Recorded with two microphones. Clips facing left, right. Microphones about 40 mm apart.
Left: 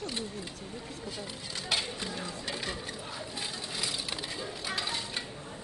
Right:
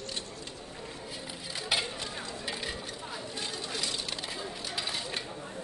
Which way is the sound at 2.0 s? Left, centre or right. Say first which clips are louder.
Left 1 dB; centre.